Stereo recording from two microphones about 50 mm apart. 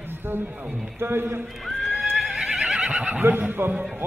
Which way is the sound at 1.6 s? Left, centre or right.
Centre.